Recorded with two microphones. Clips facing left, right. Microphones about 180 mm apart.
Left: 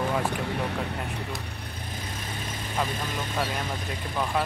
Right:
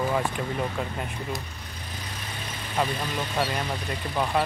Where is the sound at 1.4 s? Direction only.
60° left (ahead or behind); by 2.7 s 45° left (ahead or behind).